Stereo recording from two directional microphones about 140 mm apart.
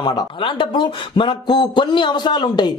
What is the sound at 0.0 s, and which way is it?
Speech, 35° left (ahead or behind).